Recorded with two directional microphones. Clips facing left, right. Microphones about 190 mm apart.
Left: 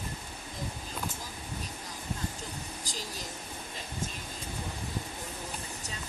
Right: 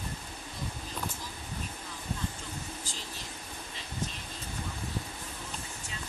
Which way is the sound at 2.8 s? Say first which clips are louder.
Left 3 dB; 40° left (ahead or behind).